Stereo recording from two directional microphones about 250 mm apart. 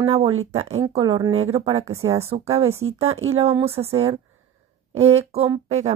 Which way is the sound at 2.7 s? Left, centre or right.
Right.